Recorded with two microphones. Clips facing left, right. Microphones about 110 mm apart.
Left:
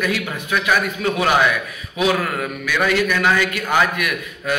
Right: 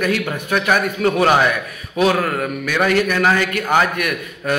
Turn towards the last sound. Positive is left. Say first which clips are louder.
# right 2 dB
turn(degrees=-40)  # may be behind; listen again after turning